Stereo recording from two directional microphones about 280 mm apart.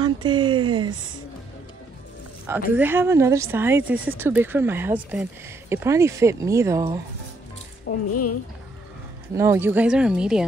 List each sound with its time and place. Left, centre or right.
0.0 s speech: centre
2.7 s speech: centre
8.1 s a woman's voice: left
9.3 s a woman's voice: centre